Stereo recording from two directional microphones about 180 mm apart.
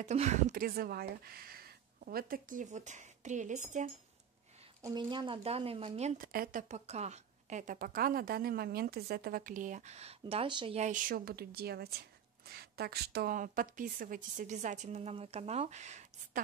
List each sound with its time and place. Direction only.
0.0 s a woman's voice: 40° right (ahead or behind)
4.8 s speech: 25° right (ahead or behind)
6.2 s a woman's voice: 55° right (ahead or behind)
6.7 s a woman's voice: 40° right (ahead or behind)
10.8 s a woman's voice: 50° right (ahead or behind)